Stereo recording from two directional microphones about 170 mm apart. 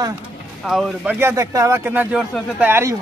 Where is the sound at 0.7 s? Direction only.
Centre (ahead or behind).